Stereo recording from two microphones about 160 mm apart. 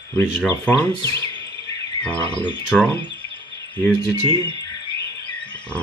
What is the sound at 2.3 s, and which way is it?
Speech, 30° left (ahead or behind).